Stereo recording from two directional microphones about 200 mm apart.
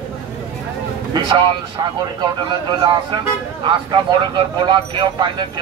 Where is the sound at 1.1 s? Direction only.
20° right (ahead or behind).